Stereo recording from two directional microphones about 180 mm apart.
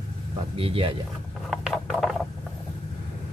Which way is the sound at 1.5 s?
Centre (ahead or behind).